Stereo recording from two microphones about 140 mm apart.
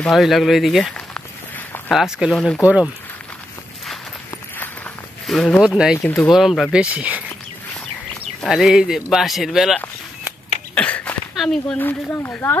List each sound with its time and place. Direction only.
0.0 s speech: centre (ahead or behind)
2.6 s speech: 10° right (ahead or behind)
5.2 s speech: centre (ahead or behind)
6.3 s speech: centre (ahead or behind)
8.4 s speech: centre (ahead or behind)
10.7 s a sound: 10° left (ahead or behind)
11.3 s speech: 5° left (ahead or behind)
11.8 s speech: 15° left (ahead or behind)